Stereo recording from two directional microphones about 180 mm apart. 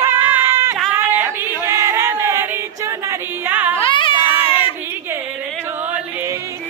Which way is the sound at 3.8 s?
30° left (ahead or behind).